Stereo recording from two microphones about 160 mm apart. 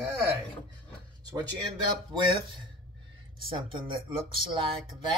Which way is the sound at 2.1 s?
30° right (ahead or behind).